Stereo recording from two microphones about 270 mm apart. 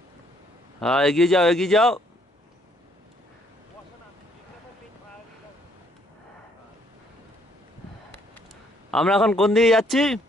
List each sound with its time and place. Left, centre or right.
0.7 s a man's voice: centre
8.9 s a man's voice: centre